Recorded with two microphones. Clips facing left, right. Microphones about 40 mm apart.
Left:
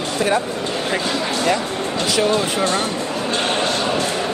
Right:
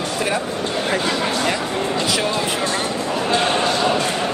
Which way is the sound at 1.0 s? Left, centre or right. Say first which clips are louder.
Even; centre.